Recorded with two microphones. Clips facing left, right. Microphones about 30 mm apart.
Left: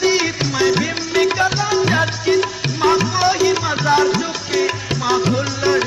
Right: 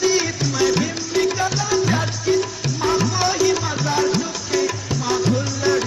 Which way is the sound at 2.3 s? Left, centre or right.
Left.